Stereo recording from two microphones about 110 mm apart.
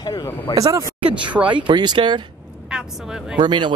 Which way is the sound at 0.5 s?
30° right (ahead or behind).